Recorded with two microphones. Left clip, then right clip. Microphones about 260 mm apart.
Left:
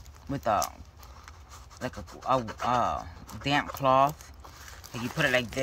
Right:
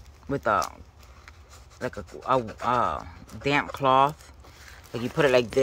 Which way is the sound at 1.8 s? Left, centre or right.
Centre.